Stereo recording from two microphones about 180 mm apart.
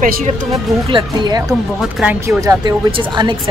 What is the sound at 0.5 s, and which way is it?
Speech, 25° right (ahead or behind).